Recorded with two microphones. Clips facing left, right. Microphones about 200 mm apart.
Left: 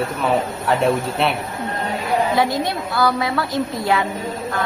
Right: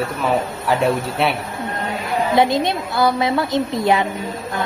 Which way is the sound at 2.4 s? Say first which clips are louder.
Right 3 dB; 20° right (ahead or behind).